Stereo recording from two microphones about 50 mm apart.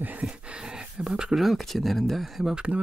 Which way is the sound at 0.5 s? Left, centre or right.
Centre.